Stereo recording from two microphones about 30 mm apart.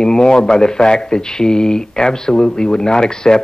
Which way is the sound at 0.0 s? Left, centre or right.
Left.